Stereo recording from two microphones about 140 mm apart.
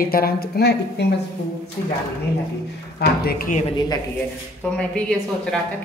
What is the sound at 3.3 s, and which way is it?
Speech, 90° left.